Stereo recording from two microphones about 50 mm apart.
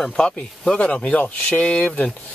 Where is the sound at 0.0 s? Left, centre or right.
Centre.